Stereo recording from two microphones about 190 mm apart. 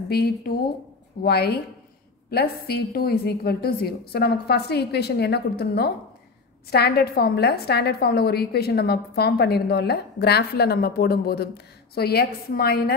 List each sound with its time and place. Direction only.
0.1 s a woman's voice: 55° left (ahead or behind)